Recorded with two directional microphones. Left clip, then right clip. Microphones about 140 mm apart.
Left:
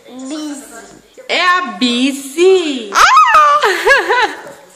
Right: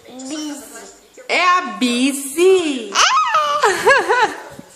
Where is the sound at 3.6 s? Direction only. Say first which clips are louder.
Left 3 dB; 5° right (ahead or behind).